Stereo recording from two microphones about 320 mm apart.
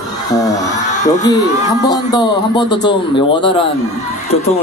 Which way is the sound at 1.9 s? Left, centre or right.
Centre.